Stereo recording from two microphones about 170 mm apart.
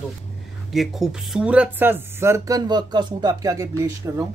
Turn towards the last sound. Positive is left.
turn(degrees=-20)  # may be behind; listen again after turning